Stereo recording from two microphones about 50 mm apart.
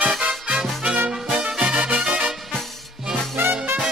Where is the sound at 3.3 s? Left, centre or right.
Right.